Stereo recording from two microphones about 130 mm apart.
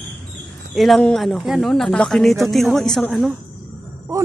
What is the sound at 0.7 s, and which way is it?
Speech, centre (ahead or behind).